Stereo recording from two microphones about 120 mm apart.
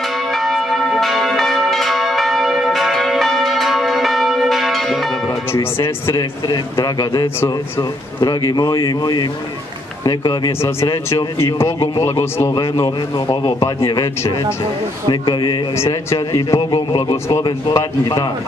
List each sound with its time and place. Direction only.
0.3 s church bell: centre (ahead or behind)
5.5 s a man's voice: 20° left (ahead or behind)
6.5 s a man's voice: 35° left (ahead or behind)
10.6 s a man's voice: 20° left (ahead or behind)
15.0 s a man's voice: 40° left (ahead or behind)
15.7 s a man's voice: 25° left (ahead or behind)